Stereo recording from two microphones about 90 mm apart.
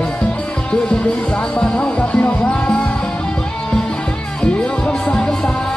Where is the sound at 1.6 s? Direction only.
10° left (ahead or behind).